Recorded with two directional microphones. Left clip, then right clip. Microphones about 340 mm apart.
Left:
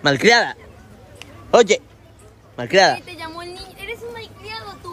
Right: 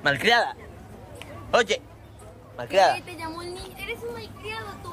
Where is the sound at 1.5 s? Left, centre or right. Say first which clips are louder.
Left 8 dB; centre.